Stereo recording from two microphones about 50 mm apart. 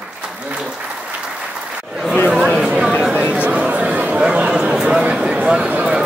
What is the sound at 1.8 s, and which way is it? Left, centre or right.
Chatter, centre.